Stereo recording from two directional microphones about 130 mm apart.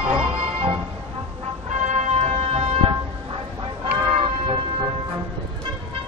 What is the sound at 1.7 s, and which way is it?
Music, 60° right (ahead or behind).